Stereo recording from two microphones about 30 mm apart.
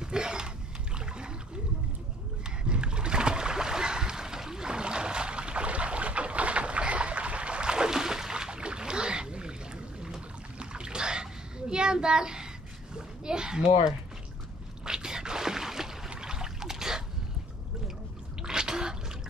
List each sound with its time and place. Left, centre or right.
0.0 s a sound: right
0.9 s splash: right
2.4 s rowboat: right
10.6 s boat: right
11.7 s a sound: right
16.1 s trickle: right
18.4 s drip: right